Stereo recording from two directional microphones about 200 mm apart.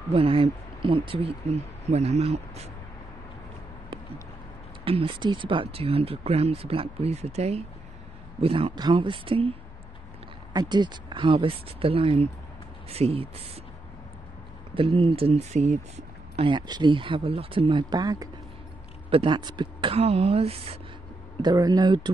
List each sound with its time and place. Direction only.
0.1 s speech: 30° right (ahead or behind)
4.8 s speech: 25° right (ahead or behind)
14.7 s speech: 25° right (ahead or behind)
16.3 s speech: 25° right (ahead or behind)